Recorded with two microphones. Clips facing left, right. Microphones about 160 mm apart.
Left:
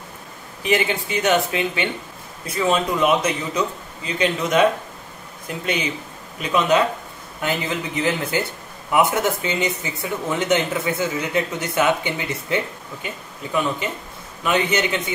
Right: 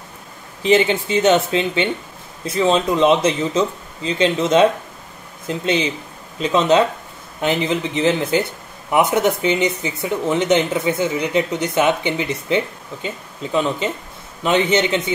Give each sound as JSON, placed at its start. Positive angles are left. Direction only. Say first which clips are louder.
{"t": 0.6, "sound": "speech", "louder": "right 6 dB", "side_deg": -25}